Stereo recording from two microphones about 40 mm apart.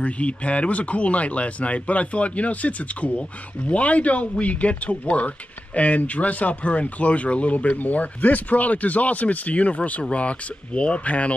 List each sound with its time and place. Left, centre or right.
0.0 s speech: left